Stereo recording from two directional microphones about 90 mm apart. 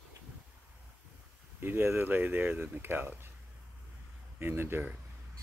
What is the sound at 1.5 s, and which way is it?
Speech, 25° right (ahead or behind).